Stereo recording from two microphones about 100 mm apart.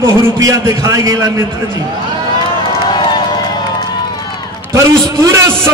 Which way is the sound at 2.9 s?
45° left (ahead or behind).